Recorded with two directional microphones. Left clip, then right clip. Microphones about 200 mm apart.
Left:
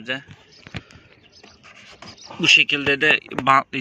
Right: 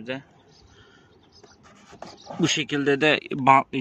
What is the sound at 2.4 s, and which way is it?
Speech, 35° right (ahead or behind).